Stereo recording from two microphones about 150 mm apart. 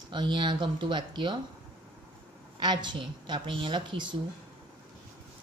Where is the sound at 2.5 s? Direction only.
30° right (ahead or behind).